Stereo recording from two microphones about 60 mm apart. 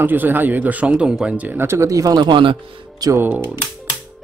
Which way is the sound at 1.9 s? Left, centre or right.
Right.